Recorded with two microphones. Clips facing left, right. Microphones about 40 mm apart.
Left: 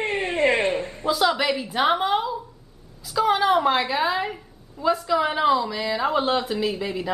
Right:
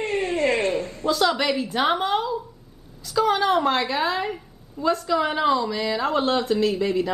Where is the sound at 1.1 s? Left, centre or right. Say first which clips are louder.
Even; centre.